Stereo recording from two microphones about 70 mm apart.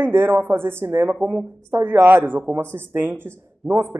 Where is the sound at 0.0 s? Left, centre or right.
Right.